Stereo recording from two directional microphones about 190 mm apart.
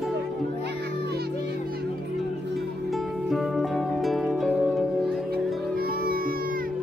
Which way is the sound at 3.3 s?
Centre (ahead or behind).